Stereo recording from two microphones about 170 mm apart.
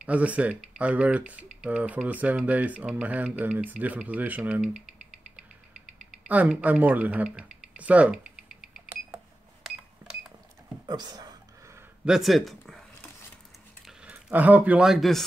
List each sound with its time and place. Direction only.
0.0 s speech: 10° right (ahead or behind)
6.2 s speech: 10° right (ahead or behind)
10.0 s cash register: 15° right (ahead or behind)
10.9 s a sound: 25° right (ahead or behind)
12.0 s speech: centre (ahead or behind)
13.8 s speech: 10° right (ahead or behind)